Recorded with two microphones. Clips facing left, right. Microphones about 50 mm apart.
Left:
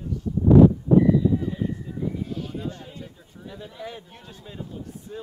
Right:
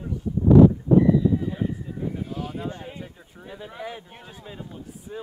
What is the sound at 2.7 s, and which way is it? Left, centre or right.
Speech, right.